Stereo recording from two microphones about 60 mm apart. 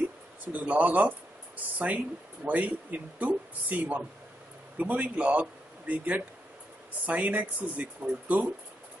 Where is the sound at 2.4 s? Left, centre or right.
Right.